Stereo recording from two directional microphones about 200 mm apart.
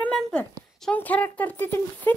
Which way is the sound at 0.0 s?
5° left (ahead or behind).